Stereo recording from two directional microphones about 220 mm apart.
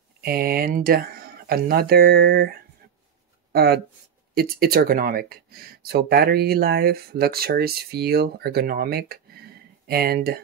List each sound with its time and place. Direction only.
0.2 s speech: 45° right (ahead or behind)
3.5 s speech: 45° right (ahead or behind)